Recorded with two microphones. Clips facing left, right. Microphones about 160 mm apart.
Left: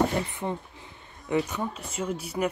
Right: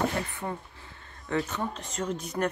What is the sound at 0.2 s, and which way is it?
Speech, 20° left (ahead or behind).